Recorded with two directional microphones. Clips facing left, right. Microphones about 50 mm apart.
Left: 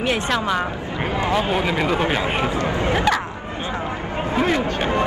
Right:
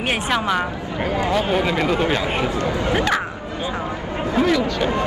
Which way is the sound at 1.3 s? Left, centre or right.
Centre.